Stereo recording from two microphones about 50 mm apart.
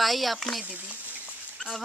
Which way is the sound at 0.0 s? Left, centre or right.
Centre.